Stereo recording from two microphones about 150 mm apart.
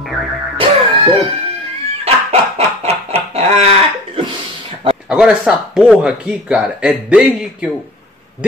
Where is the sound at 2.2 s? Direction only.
45° right (ahead or behind).